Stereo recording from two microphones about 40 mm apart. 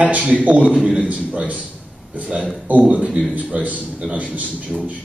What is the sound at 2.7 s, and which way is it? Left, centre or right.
A man's voice, right.